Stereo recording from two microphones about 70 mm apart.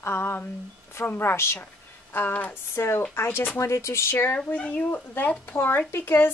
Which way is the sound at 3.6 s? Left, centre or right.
Left.